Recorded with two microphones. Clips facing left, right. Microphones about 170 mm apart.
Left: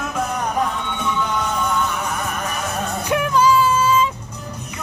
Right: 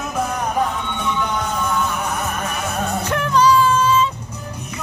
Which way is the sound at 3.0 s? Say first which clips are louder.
Even; 10° left (ahead or behind).